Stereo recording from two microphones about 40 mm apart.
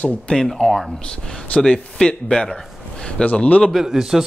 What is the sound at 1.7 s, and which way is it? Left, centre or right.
Speech, left.